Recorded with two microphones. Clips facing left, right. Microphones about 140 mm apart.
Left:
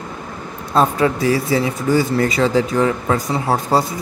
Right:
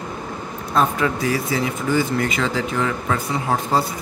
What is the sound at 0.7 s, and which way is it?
Speech, 30° left (ahead or behind).